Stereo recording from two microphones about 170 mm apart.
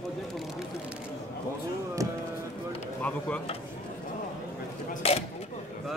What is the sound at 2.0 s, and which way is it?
Speech, 20° right (ahead or behind).